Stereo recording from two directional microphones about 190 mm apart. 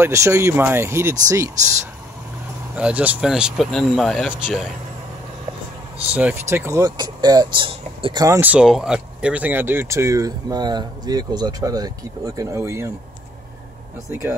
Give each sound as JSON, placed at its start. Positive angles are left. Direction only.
{"t": 0.0, "sound": "speech", "side_deg": -15}
{"t": 2.7, "sound": "speech", "side_deg": -5}
{"t": 6.1, "sound": "speech", "side_deg": -10}